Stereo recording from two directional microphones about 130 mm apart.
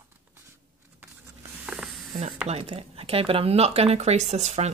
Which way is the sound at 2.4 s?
50° right (ahead or behind).